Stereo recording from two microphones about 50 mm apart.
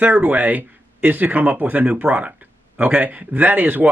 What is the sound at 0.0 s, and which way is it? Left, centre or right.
A man's voice, right.